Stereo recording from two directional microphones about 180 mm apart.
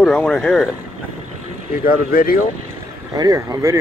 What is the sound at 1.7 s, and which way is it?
Speech, 55° left (ahead or behind).